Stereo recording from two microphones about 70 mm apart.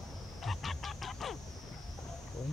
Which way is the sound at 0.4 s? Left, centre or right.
Centre.